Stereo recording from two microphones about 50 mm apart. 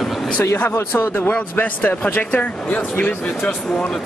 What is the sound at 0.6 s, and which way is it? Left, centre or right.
Speech, left.